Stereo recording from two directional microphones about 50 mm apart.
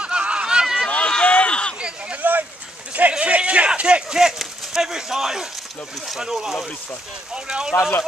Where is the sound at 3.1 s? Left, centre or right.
Right; by 5.4 s centre.